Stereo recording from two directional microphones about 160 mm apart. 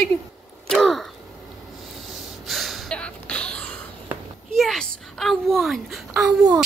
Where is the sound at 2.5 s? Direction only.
Centre (ahead or behind).